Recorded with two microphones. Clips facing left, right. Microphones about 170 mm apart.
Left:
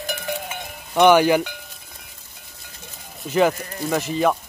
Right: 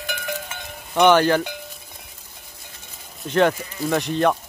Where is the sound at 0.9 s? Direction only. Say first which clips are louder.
Left 1 dB; 10° left (ahead or behind).